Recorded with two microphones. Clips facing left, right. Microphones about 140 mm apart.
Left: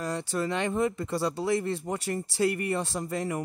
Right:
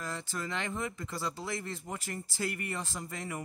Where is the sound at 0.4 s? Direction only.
25° left (ahead or behind).